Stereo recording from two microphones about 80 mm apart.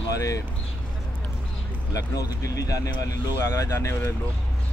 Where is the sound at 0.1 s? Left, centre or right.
Left.